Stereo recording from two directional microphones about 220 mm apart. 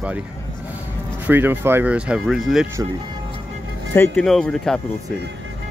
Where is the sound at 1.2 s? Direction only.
10° right (ahead or behind).